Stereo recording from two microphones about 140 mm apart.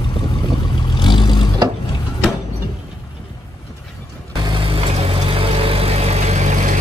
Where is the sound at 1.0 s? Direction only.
35° left (ahead or behind).